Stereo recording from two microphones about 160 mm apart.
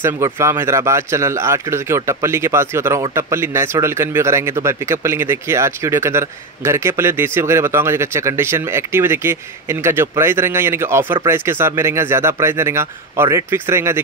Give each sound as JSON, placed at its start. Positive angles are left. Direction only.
{"t": 0.0, "sound": "speech", "side_deg": -15}